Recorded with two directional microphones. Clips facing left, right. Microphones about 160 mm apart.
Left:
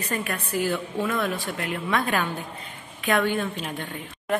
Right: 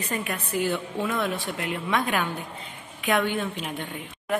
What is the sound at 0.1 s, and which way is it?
A woman's voice, 20° right (ahead or behind).